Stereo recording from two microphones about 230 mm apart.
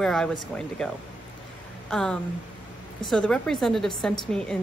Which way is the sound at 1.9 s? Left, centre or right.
Centre.